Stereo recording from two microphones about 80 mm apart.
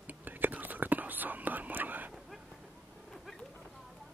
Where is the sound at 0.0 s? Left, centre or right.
Right.